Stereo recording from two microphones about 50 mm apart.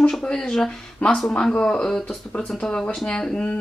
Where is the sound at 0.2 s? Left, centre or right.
Centre.